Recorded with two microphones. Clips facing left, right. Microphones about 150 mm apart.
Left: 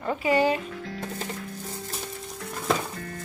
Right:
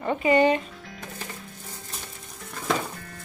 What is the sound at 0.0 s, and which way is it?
Speech, centre (ahead or behind).